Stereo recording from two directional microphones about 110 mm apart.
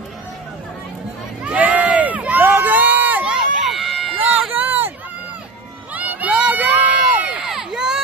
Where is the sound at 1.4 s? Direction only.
15° right (ahead or behind).